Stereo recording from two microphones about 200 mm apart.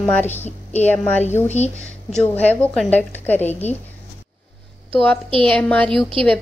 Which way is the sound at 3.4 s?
35° left (ahead or behind).